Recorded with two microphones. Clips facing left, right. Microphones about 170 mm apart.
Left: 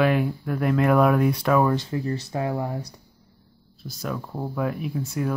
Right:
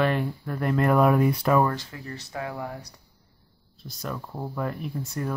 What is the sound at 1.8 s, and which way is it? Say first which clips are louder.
Speech: left 11 dB; 25° left (ahead or behind).